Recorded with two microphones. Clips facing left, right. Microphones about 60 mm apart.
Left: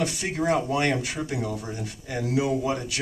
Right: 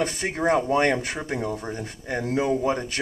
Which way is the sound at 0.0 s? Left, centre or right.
Right.